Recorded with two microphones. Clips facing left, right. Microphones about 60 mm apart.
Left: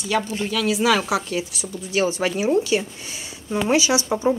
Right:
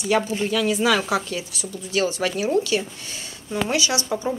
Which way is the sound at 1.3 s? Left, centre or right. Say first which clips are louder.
Left 4 dB; centre.